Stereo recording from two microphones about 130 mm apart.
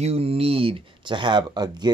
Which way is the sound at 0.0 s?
50° right (ahead or behind).